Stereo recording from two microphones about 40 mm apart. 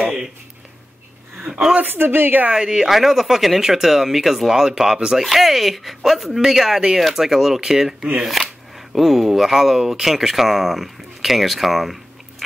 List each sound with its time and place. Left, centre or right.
0.0 s a sound: centre
2.0 s a woman's voice: right
2.5 s speech: centre